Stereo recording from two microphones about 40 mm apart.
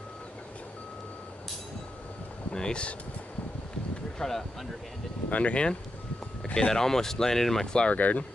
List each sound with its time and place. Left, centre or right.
2.5 s speech: left
4.2 s speech: centre
5.3 s speech: left
6.7 s speech: centre
7.6 s speech: left
7.9 s speech: left